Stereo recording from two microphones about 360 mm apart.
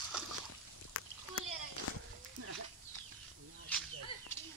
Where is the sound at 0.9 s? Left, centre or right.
Left.